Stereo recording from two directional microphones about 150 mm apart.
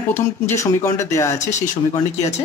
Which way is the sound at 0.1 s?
15° left (ahead or behind).